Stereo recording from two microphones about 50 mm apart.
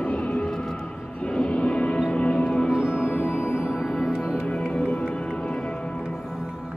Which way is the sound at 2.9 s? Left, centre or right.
Left.